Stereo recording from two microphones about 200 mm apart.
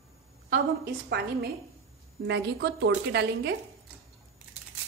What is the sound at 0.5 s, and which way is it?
A woman's voice, 50° right (ahead or behind).